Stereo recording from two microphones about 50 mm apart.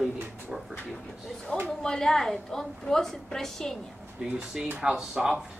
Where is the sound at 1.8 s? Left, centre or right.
Centre.